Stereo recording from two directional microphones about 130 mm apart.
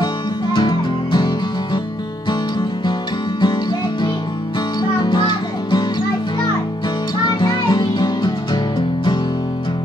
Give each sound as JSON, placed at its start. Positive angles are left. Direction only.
{"t": 0.0, "sound": "music", "side_deg": 35}
{"t": 5.0, "sound": "music", "side_deg": 35}
{"t": 7.2, "sound": "music", "side_deg": 35}